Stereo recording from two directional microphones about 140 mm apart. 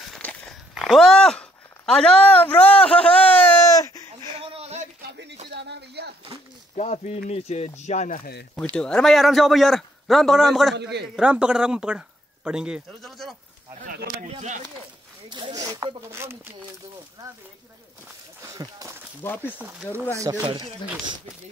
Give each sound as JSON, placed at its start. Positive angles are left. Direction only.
{"t": 0.0, "sound": "walk", "side_deg": 5}
{"t": 0.7, "sound": "speech", "side_deg": 0}
{"t": 3.7, "sound": "a sound", "side_deg": 25}
{"t": 4.4, "sound": "a sound", "side_deg": -45}
{"t": 6.7, "sound": "speech", "side_deg": 55}
{"t": 8.7, "sound": "a man's voice", "side_deg": 5}
{"t": 14.2, "sound": "speech", "side_deg": -55}
{"t": 15.2, "sound": "speech", "side_deg": -35}
{"t": 16.1, "sound": "speech", "side_deg": -20}
{"t": 18.4, "sound": "a sound", "side_deg": -25}
{"t": 19.2, "sound": "speech", "side_deg": 15}
{"t": 19.6, "sound": "speech", "side_deg": -15}
{"t": 20.4, "sound": "speech", "side_deg": -35}